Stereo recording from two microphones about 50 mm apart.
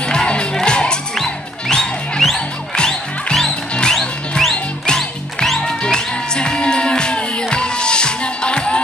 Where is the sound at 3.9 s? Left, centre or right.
Centre.